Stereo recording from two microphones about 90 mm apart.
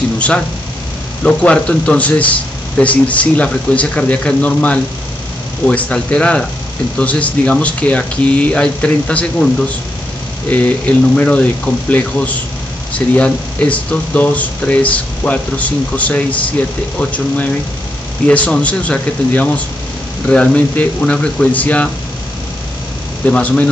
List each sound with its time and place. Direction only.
1.2 s speech: 15° left (ahead or behind)
10.5 s speech: 15° left (ahead or behind)
23.2 s speech: 15° left (ahead or behind)